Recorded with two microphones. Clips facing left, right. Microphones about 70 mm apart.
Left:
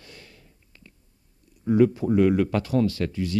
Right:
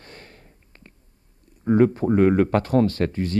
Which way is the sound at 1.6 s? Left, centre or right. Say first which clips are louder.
Right 2 dB; right.